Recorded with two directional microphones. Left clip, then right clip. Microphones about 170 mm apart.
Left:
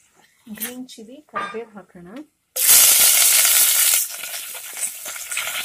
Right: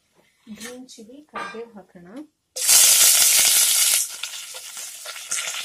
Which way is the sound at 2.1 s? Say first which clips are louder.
Left 3 dB; 10° left (ahead or behind).